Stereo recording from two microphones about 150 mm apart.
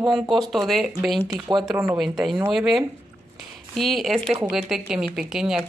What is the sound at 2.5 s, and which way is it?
Speech, centre (ahead or behind).